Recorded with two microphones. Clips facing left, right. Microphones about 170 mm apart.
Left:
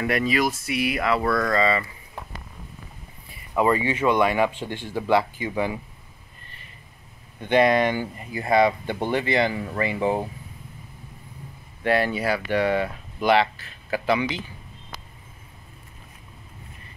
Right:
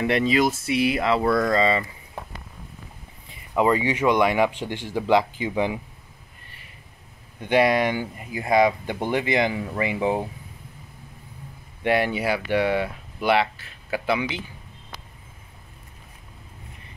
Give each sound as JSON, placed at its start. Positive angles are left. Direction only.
{"t": 0.0, "sound": "speech", "side_deg": -25}
{"t": 3.3, "sound": "speech", "side_deg": -15}
{"t": 7.3, "sound": "speech", "side_deg": -10}
{"t": 11.8, "sound": "speech", "side_deg": -15}